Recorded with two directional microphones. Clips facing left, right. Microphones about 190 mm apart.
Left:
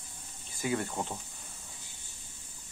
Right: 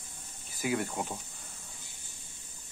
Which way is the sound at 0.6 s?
10° right (ahead or behind).